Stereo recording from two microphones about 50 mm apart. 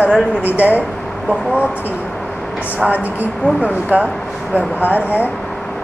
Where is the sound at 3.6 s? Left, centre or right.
Right.